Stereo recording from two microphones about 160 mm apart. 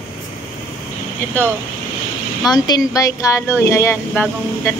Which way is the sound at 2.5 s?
25° left (ahead or behind).